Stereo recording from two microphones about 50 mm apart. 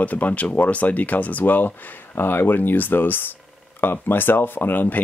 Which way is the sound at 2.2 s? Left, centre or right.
Left.